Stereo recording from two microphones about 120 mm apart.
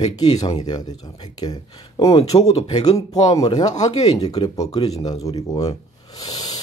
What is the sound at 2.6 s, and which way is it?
Speech, 35° left (ahead or behind).